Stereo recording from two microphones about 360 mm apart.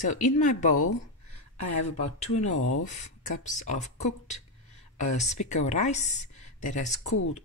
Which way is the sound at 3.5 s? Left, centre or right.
Centre.